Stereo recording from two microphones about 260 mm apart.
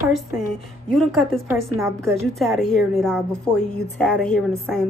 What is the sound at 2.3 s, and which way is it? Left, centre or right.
A woman's voice, centre.